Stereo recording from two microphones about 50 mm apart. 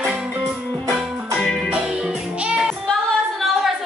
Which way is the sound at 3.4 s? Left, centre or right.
Centre.